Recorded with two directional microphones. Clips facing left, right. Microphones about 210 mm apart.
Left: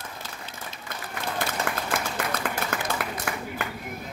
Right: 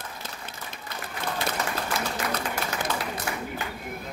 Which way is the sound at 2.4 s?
55° left (ahead or behind).